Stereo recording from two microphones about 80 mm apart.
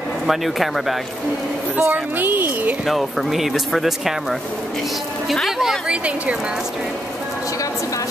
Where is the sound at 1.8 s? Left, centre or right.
Right.